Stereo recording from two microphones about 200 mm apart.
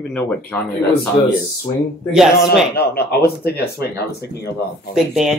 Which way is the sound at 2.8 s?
50° left (ahead or behind).